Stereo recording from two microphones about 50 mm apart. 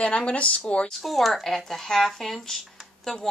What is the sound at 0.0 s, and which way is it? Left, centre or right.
Speech, left.